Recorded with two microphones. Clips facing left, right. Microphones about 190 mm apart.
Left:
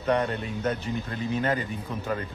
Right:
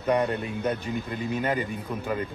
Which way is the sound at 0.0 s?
10° right (ahead or behind).